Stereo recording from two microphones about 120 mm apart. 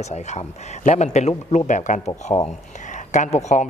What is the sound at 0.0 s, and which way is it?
A man's voice, 65° left (ahead or behind).